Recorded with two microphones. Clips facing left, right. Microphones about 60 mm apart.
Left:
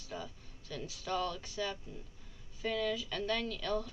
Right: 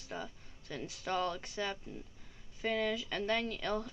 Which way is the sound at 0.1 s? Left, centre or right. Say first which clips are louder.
Right 1 dB; right.